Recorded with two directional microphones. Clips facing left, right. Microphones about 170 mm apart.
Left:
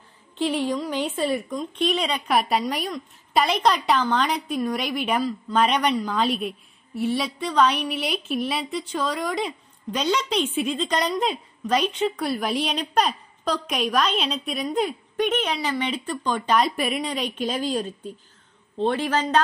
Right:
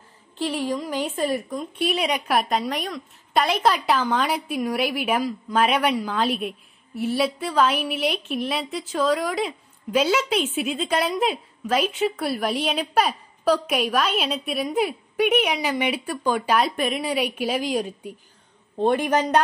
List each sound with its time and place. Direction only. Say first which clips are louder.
0.4 s a sound: left 2 dB; centre (ahead or behind)
1.1 s speech: right 1 dB; 45° right (ahead or behind)
1.5 s a woman's voice: left 1 dB; 5° right (ahead or behind)
2.3 s a woman's voice: left 3 dB; centre (ahead or behind); by 19.4 s 15° right (ahead or behind)